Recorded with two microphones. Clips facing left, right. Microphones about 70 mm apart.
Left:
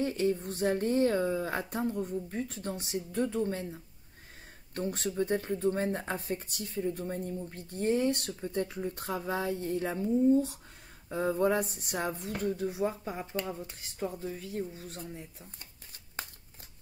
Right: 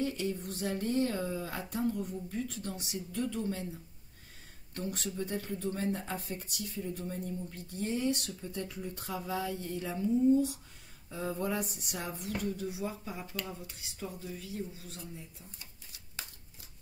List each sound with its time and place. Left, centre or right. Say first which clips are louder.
0.0 s speech: left 5 dB; left
13.2 s speech: left 5 dB; left